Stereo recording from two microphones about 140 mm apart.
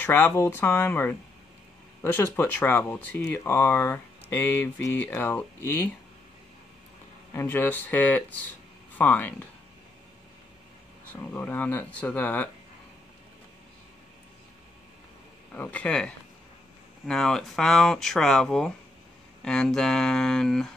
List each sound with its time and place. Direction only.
0.0 s speech: 15° left (ahead or behind)
7.3 s speech: 15° left (ahead or behind)
11.2 s speech: 10° left (ahead or behind)
15.5 s speech: 10° left (ahead or behind)